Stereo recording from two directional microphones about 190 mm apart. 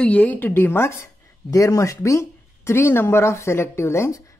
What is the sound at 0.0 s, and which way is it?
Speech, 5° left (ahead or behind).